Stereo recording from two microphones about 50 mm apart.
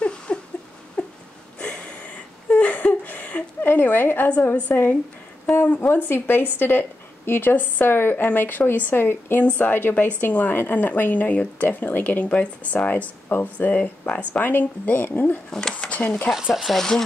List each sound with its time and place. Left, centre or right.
0.3 s rodents: left
1.0 s a sound: left
2.5 s a sound: left
4.3 s a woman's voice: left
14.3 s a woman's voice: left
16.3 s speech: centre
16.7 s speech: centre